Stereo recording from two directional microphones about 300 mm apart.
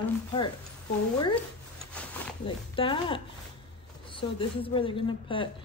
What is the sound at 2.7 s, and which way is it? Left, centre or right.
A woman's voice, centre.